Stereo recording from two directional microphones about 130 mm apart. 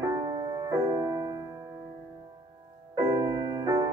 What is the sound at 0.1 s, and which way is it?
Music, 30° right (ahead or behind).